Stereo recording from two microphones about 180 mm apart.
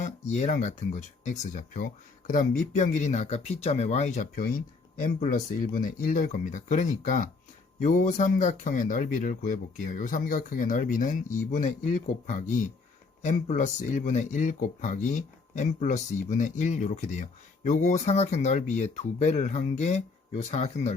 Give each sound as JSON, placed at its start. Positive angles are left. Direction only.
{"t": 0.0, "sound": "speech", "side_deg": 40}